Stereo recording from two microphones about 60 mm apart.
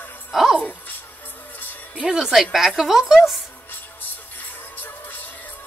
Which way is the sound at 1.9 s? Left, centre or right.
Centre.